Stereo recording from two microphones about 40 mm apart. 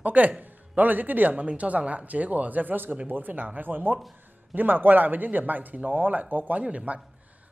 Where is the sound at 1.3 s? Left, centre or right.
Right.